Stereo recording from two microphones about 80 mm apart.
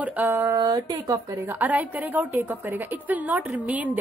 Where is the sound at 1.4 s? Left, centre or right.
Right.